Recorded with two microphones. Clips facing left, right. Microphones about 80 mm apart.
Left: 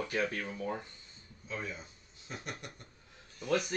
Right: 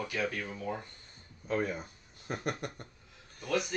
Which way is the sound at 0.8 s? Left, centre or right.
Right.